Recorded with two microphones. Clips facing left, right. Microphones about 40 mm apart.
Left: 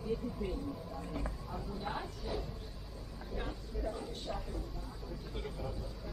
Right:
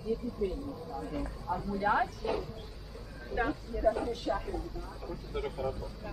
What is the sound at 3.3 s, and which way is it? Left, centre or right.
Speech, right.